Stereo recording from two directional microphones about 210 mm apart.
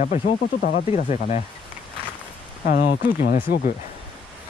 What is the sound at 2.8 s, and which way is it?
Speech, 45° left (ahead or behind).